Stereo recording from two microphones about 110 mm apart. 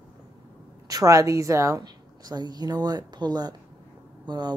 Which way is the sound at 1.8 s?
40° right (ahead or behind).